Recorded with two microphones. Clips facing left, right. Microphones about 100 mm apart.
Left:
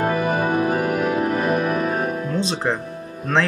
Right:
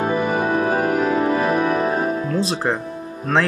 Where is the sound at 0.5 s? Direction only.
35° right (ahead or behind).